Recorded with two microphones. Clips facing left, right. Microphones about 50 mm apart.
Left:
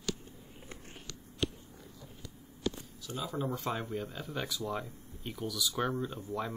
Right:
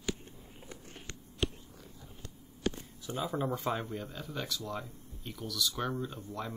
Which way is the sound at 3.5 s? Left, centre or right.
Centre.